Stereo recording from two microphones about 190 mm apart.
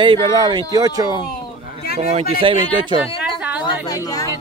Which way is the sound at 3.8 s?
20° left (ahead or behind).